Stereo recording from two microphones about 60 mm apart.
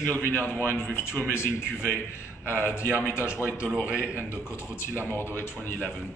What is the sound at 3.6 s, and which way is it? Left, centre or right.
Speech, right.